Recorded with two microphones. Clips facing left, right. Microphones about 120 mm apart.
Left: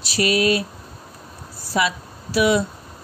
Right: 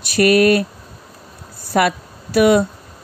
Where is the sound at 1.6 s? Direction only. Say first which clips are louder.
Right 5 dB; 55° right (ahead or behind).